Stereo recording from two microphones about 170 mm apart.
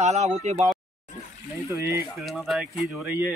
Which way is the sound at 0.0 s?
40° right (ahead or behind).